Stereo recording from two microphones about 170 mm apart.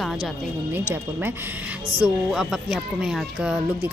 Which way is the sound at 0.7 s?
10° right (ahead or behind).